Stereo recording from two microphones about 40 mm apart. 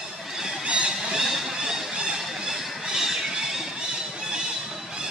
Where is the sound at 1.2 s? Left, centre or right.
Centre.